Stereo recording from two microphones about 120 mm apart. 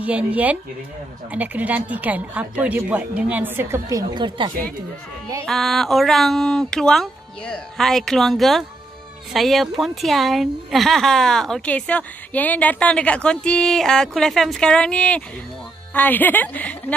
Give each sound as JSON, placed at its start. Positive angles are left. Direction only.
{"t": 0.0, "sound": "speech", "side_deg": -10}
{"t": 3.9, "sound": "speech", "side_deg": -40}
{"t": 5.4, "sound": "speech", "side_deg": 0}